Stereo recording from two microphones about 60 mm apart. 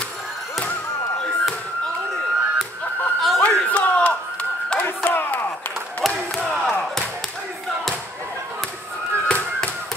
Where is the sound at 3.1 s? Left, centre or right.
Centre.